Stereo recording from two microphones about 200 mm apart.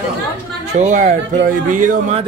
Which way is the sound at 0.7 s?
35° right (ahead or behind).